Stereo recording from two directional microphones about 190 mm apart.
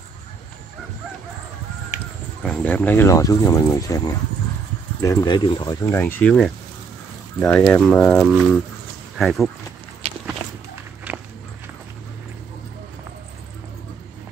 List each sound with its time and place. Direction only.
2.4 s speech: 10° left (ahead or behind)
5.0 s speech: 20° left (ahead or behind); by 9.5 s centre (ahead or behind)
10.0 s walk: 35° right (ahead or behind)
11.1 s walk: 10° right (ahead or behind)